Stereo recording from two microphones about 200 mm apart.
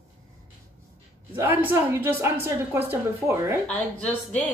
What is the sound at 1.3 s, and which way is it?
A woman's voice, 10° right (ahead or behind).